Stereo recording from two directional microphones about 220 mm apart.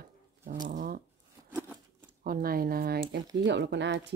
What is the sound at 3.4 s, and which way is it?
Speech, 55° right (ahead or behind).